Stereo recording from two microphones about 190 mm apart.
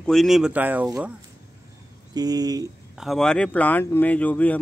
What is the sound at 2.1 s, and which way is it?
Speech, 20° right (ahead or behind).